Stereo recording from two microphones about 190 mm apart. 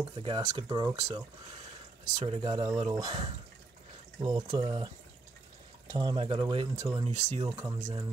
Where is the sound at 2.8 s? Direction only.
20° right (ahead or behind).